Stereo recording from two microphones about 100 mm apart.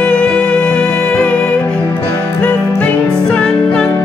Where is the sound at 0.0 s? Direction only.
10° left (ahead or behind).